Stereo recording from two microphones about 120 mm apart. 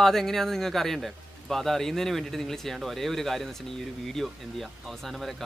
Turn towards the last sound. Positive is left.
turn(degrees=0)  # may be behind; listen again after turning